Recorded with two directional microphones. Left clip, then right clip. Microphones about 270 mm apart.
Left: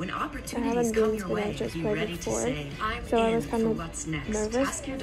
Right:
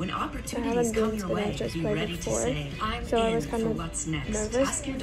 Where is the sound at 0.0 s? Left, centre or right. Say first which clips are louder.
Right 1 dB; centre.